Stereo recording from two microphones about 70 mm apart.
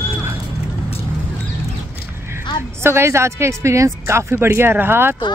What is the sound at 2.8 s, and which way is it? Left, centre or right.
Speech, right.